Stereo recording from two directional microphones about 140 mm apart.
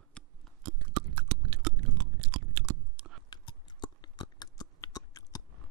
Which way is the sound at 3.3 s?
30° left (ahead or behind).